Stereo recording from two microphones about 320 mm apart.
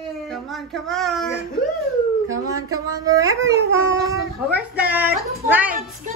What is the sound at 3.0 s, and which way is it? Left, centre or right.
A child's voice, centre.